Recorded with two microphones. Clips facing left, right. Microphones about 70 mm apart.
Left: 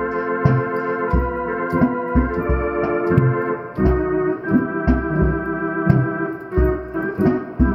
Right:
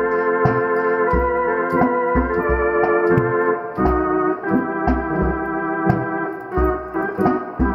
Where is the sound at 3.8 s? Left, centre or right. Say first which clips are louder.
Left 1 dB; right.